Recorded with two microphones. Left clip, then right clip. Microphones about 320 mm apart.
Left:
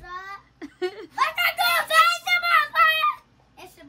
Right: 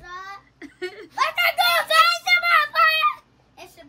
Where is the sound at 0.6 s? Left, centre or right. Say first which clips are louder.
Left 4 dB; centre.